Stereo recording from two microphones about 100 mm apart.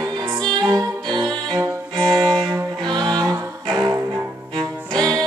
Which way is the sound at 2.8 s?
45° right (ahead or behind).